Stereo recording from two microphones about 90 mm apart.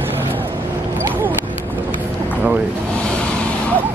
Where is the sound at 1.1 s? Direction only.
20° right (ahead or behind).